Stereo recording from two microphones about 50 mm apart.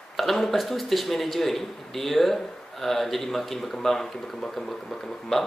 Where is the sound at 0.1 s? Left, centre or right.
Centre.